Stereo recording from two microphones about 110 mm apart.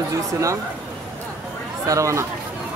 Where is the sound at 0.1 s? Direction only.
30° right (ahead or behind).